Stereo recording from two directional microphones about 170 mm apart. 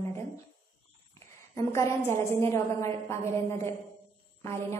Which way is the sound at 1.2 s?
15° left (ahead or behind).